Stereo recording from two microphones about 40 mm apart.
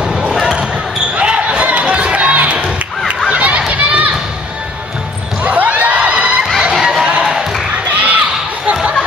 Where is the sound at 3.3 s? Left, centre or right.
Right.